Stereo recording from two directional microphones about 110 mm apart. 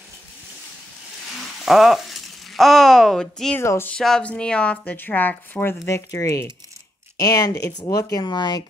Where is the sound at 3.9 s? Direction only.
5° left (ahead or behind); by 8.6 s 40° left (ahead or behind).